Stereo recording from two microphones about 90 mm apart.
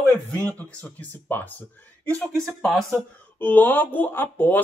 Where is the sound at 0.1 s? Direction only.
20° left (ahead or behind).